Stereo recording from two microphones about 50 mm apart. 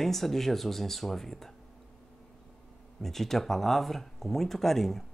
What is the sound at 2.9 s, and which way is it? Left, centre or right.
Speech, centre.